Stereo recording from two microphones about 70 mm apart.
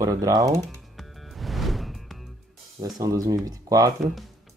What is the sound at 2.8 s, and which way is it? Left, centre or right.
Speech, right.